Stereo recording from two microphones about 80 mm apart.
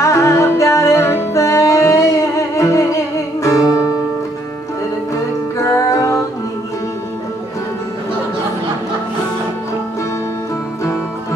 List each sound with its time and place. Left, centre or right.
0.0 s music: left
5.1 s music: left